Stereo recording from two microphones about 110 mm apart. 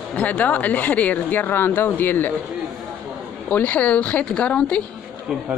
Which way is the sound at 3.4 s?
15° left (ahead or behind).